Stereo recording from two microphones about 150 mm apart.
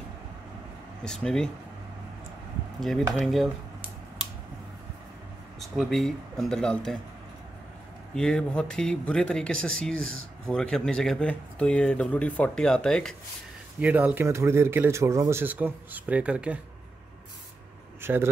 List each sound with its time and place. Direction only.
1.0 s speech: 5° left (ahead or behind)
2.8 s speech: centre (ahead or behind)
5.6 s speech: centre (ahead or behind)
8.1 s speech: 5° left (ahead or behind)
13.7 s speech: 10° right (ahead or behind)
18.0 s speech: 15° right (ahead or behind)